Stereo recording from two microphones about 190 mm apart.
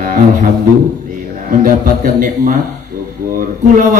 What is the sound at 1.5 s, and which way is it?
A man's voice, 45° right (ahead or behind).